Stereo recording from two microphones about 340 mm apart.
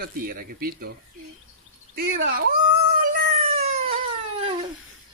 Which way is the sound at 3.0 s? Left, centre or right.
Right.